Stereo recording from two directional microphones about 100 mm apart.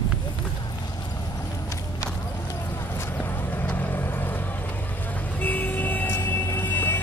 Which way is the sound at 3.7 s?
20° left (ahead or behind).